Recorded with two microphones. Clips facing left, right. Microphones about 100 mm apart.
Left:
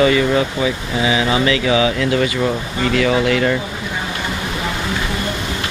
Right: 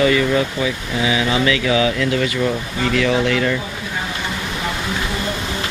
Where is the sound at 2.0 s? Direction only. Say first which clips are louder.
Left 2 dB; 25° left (ahead or behind).